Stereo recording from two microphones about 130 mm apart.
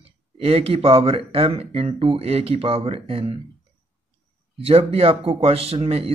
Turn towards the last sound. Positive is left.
turn(degrees=-50)  # may be behind; listen again after turning